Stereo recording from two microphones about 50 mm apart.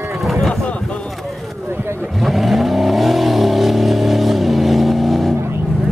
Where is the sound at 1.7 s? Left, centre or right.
Right.